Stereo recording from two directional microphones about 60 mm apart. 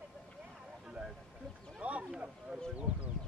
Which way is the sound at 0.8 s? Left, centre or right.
Centre.